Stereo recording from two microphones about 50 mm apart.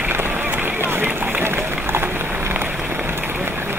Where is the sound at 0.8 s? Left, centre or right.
Right.